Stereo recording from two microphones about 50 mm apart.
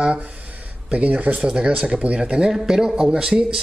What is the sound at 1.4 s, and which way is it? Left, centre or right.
Speech, centre.